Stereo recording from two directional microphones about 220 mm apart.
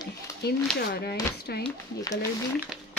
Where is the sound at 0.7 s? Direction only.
45° left (ahead or behind).